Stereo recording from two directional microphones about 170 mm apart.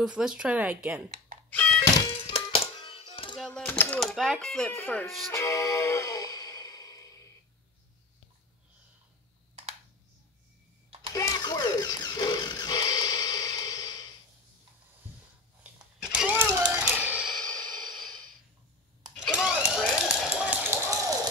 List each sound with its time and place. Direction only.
0.0 s speech: 5° right (ahead or behind)
1.5 s thunk: 10° left (ahead or behind)
2.0 s music: 30° left (ahead or behind)
3.3 s a sound: 5° left (ahead or behind)
4.7 s thunk: 15° left (ahead or behind)
5.3 s music: 15° left (ahead or behind)
11.1 s music: 20° left (ahead or behind)
15.6 s a sound: 5° right (ahead or behind)
16.7 s music: 10° right (ahead or behind)
19.1 s a sound: 5° right (ahead or behind)